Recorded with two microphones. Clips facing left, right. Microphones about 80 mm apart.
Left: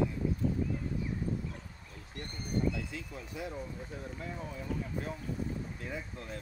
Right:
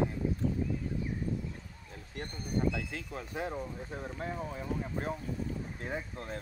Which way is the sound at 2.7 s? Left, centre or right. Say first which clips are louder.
Right 2 dB; right.